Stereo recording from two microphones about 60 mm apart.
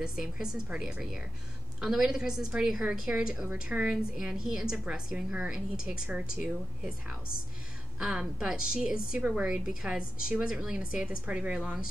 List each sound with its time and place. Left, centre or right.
0.0 s a woman's voice: centre
4.2 s a woman's voice: centre